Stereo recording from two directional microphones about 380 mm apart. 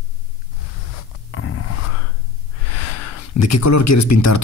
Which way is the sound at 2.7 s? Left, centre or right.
Left.